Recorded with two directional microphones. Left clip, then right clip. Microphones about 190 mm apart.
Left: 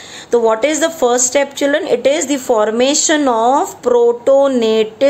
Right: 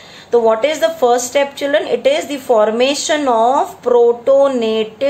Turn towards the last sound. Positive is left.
turn(degrees=25)  # may be behind; listen again after turning